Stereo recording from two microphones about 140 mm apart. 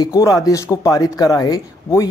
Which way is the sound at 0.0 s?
25° left (ahead or behind).